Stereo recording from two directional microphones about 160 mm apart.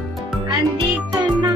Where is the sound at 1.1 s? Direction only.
25° right (ahead or behind).